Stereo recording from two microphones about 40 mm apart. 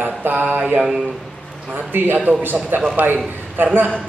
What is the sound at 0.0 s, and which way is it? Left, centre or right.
Mantra, right.